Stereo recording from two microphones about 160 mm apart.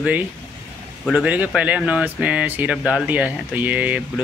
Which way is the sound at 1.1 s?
10° right (ahead or behind).